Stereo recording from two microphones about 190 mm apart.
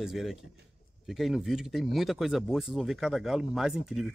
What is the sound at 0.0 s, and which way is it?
Speech, centre (ahead or behind).